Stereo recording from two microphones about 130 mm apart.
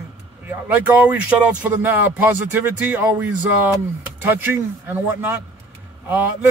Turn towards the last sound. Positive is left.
turn(degrees=-15)  # may be behind; listen again after turning